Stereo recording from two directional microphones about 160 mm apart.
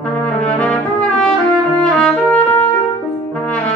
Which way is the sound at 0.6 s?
5° left (ahead or behind).